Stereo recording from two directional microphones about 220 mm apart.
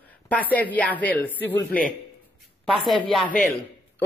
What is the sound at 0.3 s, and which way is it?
Speech, 5° left (ahead or behind).